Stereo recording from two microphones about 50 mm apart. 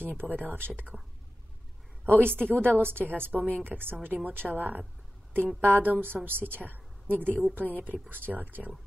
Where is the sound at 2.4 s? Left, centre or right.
Right.